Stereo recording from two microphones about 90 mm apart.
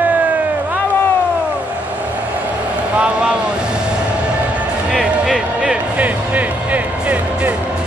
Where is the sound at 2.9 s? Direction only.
10° right (ahead or behind).